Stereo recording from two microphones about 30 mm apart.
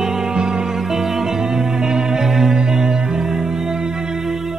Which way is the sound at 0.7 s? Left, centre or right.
Centre.